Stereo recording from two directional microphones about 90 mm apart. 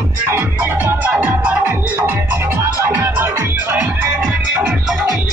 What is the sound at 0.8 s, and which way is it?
Music, 20° right (ahead or behind).